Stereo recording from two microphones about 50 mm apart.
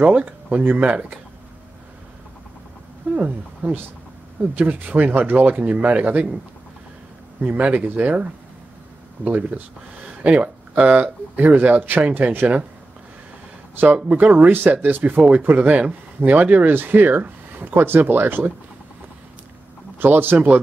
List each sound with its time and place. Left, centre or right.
0.0 s speech: right
3.2 s speech: right
7.4 s speech: right
9.2 s speech: right
14.0 s speech: right
20.0 s speech: right